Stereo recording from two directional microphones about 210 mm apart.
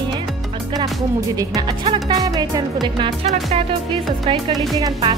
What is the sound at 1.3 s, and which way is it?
Speech, 15° right (ahead or behind).